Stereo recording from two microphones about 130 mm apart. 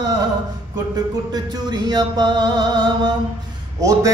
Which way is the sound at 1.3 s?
30° right (ahead or behind).